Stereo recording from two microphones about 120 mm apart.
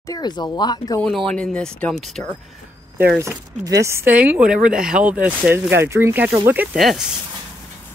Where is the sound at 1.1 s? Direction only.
5° left (ahead or behind).